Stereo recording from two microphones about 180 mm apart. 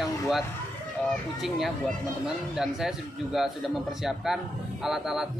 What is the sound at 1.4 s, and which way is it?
A man's voice, centre (ahead or behind).